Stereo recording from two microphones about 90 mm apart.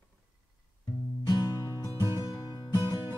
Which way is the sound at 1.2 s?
45° left (ahead or behind).